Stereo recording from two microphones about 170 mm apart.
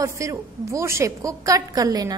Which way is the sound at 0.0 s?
20° right (ahead or behind).